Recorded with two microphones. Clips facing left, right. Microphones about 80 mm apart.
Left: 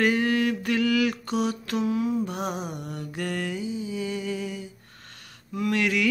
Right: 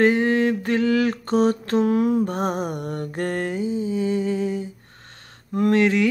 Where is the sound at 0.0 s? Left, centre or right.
Right.